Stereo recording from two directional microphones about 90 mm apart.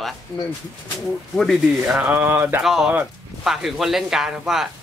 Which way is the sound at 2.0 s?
20° right (ahead or behind).